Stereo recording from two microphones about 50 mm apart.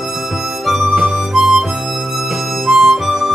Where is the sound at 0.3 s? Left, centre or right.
Centre.